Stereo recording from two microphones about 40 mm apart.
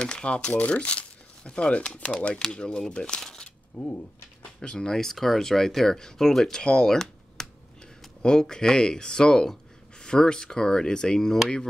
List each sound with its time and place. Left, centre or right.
0.0 s speech: left
0.5 s speech: left
2.2 s speech: left
3.2 s a sound: centre
3.7 s speech: left
4.7 s speech: centre
6.6 s speech: left
6.9 s computer keyboard: centre
8.2 s speech: centre